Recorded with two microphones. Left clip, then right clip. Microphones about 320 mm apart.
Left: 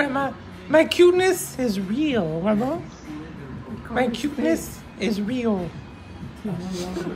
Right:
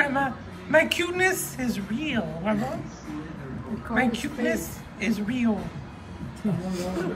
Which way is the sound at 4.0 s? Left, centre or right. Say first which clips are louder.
Left 3 dB; centre.